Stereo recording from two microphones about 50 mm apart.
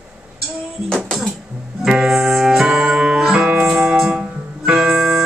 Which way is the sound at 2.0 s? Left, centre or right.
Centre.